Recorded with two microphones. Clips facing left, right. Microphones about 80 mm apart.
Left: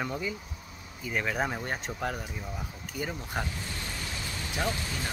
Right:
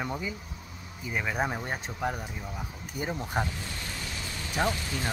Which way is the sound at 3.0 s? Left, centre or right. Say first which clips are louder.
Right 3 dB; right.